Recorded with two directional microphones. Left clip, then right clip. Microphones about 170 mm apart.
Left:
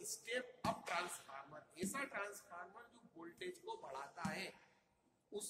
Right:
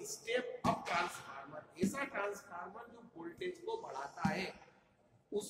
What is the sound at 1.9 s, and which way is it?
Speech, 25° left (ahead or behind).